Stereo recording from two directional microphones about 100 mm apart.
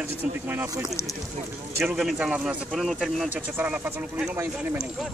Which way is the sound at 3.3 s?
20° right (ahead or behind).